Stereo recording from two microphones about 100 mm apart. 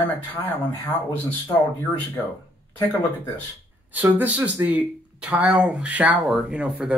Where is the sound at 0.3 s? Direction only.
20° left (ahead or behind).